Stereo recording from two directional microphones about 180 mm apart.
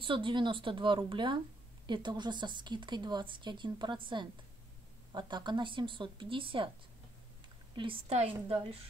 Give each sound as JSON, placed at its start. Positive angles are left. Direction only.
{"t": 0.0, "sound": "speech", "side_deg": -30}
{"t": 7.7, "sound": "a woman's voice", "side_deg": -30}